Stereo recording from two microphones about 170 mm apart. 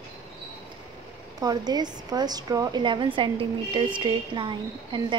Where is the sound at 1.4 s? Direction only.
25° right (ahead or behind).